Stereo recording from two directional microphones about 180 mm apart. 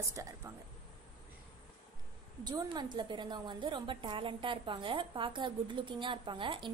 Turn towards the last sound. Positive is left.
turn(degrees=-25)  # may be behind; listen again after turning